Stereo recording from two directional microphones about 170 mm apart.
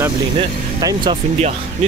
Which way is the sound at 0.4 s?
25° right (ahead or behind).